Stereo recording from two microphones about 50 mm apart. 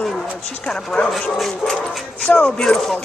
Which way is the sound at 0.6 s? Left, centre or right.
Left.